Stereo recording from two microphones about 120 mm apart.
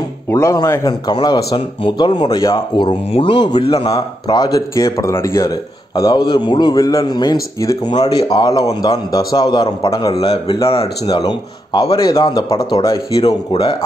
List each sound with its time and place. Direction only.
0.3 s a man's voice: 25° left (ahead or behind)
5.9 s a man's voice: 35° left (ahead or behind)
13.5 s speech: 50° left (ahead or behind)